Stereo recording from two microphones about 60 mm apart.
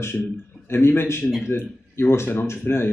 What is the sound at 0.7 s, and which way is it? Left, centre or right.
A man's voice, left.